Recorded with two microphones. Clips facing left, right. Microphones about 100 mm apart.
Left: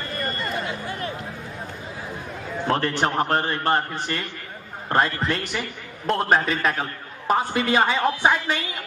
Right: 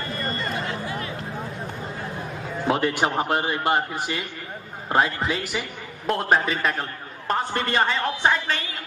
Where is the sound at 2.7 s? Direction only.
10° right (ahead or behind); by 8.6 s 10° left (ahead or behind).